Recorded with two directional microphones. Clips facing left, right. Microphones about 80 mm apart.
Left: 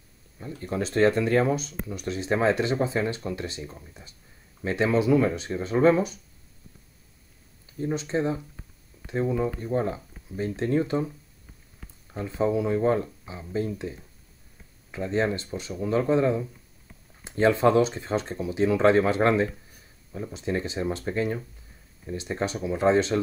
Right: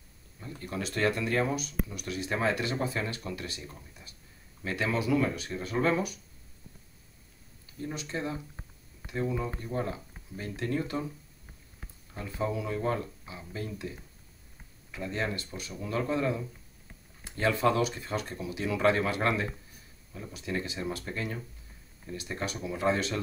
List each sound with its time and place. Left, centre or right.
0.6 s speech: left
7.8 s speech: left
12.1 s speech: left
14.9 s speech: left